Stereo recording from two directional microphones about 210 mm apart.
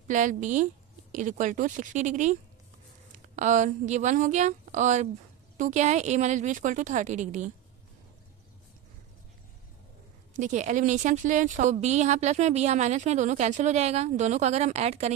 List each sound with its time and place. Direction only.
0.1 s speech: 35° right (ahead or behind)
3.3 s speech: 35° right (ahead or behind)
10.3 s speech: 35° right (ahead or behind)